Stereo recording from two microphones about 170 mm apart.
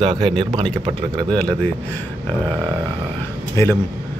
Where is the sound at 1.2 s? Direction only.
5° left (ahead or behind).